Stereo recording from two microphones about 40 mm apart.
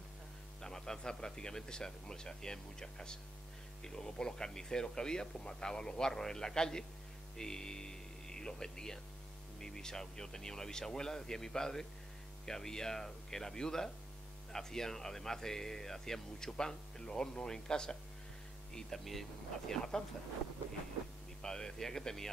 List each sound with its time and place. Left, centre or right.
0.6 s speech: centre
21.4 s speech: centre